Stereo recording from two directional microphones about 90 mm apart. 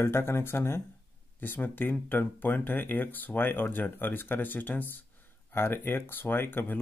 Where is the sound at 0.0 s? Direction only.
30° left (ahead or behind).